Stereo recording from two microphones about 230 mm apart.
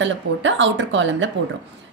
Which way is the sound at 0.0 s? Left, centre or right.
Right.